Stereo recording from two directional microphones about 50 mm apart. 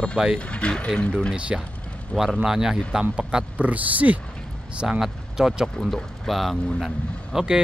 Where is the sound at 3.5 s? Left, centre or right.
Right.